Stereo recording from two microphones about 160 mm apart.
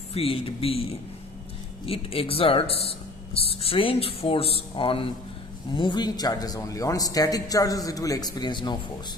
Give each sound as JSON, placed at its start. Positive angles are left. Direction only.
{"t": 0.1, "sound": "speech", "side_deg": 35}
{"t": 1.9, "sound": "a man's voice", "side_deg": 35}